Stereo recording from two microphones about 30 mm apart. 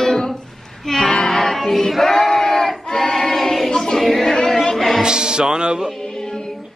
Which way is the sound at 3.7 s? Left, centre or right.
Left.